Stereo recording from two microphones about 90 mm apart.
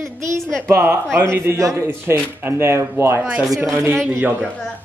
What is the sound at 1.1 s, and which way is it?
A man's voice, 30° right (ahead or behind).